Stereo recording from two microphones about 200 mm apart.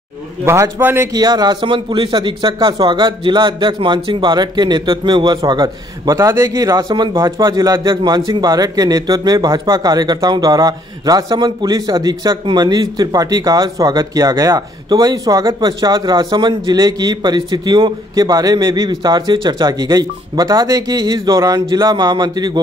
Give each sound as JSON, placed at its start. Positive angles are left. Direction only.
{"t": 0.5, "sound": "speech", "side_deg": -10}